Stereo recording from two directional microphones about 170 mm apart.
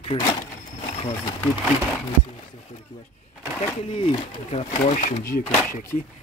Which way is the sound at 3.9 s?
30° left (ahead or behind).